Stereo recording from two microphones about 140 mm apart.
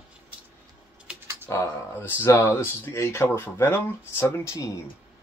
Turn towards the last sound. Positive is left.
turn(degrees=20)  # may be behind; listen again after turning